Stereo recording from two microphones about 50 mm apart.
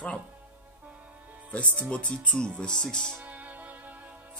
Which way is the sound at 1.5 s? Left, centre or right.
Left.